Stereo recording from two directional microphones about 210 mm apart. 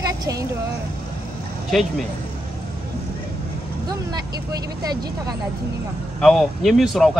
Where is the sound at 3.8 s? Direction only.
20° right (ahead or behind).